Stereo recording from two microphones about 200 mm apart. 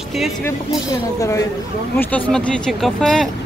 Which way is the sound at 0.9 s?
15° left (ahead or behind).